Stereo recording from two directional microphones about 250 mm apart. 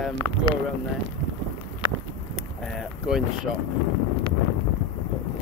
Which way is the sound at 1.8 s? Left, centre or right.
Right.